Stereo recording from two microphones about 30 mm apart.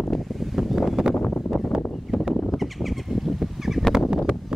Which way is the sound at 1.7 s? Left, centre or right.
Centre.